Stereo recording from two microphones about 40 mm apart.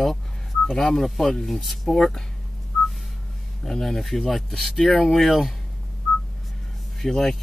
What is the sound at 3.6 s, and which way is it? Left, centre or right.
Speech, centre.